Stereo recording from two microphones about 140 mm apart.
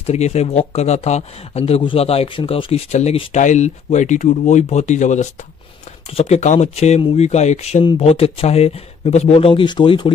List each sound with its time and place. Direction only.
0.0 s speech: 50° left (ahead or behind)
3.3 s speech: 60° left (ahead or behind); by 10.1 s 35° left (ahead or behind)